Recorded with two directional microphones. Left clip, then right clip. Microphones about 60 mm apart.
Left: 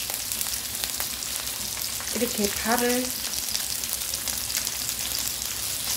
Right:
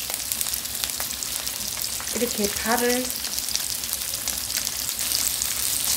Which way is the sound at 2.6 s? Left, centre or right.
Centre.